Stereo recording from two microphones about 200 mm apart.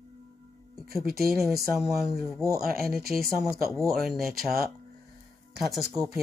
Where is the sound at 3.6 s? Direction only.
Centre (ahead or behind).